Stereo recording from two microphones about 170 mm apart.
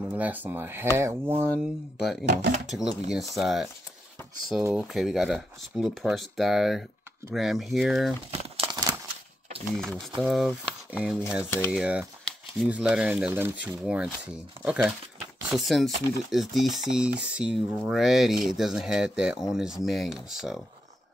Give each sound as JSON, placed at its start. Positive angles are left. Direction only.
{"t": 0.1, "sound": "speech", "side_deg": -10}
{"t": 2.0, "sound": "speech", "side_deg": 0}
{"t": 2.2, "sound": "speech", "side_deg": -50}
{"t": 2.6, "sound": "speech", "side_deg": -5}
{"t": 4.6, "sound": "speech", "side_deg": -5}
{"t": 8.3, "sound": "crumpling", "side_deg": -35}
{"t": 8.7, "sound": "a sound", "side_deg": -20}
{"t": 10.1, "sound": "speech", "side_deg": 0}